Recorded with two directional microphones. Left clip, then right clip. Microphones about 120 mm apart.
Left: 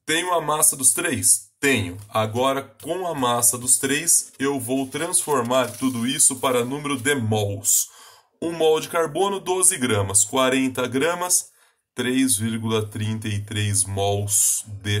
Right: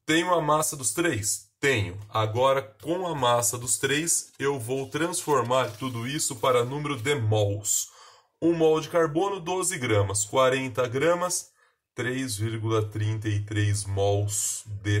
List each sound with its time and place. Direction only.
0.0 s speech: 45° left (ahead or behind)